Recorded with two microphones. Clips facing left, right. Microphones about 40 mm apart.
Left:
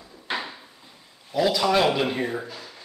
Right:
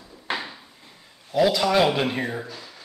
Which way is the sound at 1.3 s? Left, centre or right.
Centre.